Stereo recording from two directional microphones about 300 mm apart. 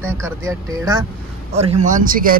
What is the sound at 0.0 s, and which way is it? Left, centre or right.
Speech, centre.